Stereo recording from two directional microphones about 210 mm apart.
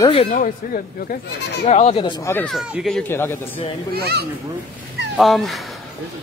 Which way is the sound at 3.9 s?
50° right (ahead or behind).